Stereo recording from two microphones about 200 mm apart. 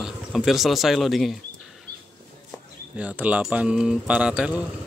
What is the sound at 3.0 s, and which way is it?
Speech, 5° right (ahead or behind).